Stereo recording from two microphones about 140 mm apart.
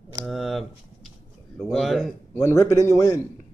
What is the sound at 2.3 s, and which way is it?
Speech, 20° left (ahead or behind).